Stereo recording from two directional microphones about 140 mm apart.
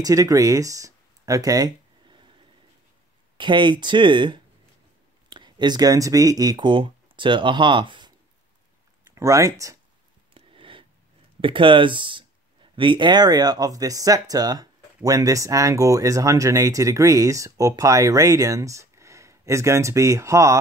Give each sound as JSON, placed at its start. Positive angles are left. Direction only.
{"t": 0.0, "sound": "speech", "side_deg": -25}
{"t": 3.3, "sound": "speech", "side_deg": -35}
{"t": 9.1, "sound": "speech", "side_deg": -20}
{"t": 10.3, "sound": "a sound", "side_deg": -40}
{"t": 11.4, "sound": "speech", "side_deg": -35}